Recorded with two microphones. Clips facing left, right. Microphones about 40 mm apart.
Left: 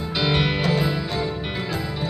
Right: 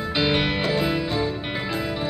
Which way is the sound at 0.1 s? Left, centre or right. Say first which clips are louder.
Even; right.